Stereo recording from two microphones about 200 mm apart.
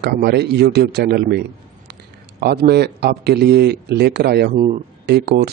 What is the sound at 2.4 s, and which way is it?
Speech, 55° right (ahead or behind).